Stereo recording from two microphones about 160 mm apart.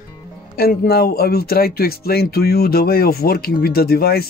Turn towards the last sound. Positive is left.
turn(degrees=75)  # may be behind; listen again after turning